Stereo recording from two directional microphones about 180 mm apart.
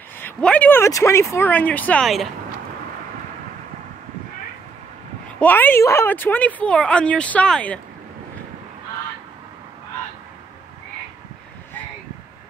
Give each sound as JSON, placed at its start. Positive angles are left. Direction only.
{"t": 0.2, "sound": "speech", "side_deg": 5}
{"t": 5.4, "sound": "speech", "side_deg": 10}